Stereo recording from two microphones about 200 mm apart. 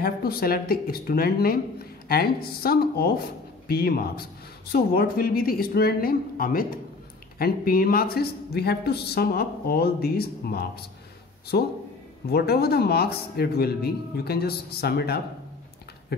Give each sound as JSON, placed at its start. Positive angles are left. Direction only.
{"t": 0.0, "sound": "speech", "side_deg": 50}